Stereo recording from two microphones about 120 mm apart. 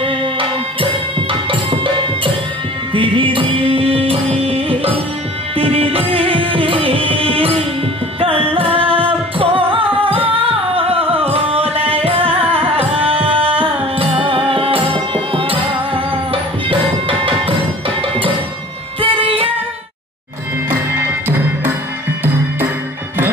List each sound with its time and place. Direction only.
0.0 s music: 45° right (ahead or behind)
2.9 s music: 45° right (ahead or behind)